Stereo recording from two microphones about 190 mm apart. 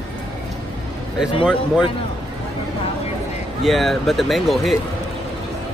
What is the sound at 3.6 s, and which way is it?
Speech, centre (ahead or behind).